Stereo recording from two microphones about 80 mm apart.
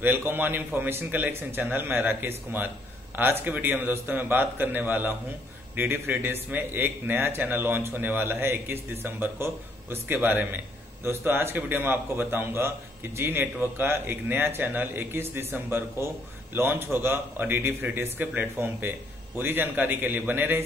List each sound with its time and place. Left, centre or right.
0.0 s a man's voice: right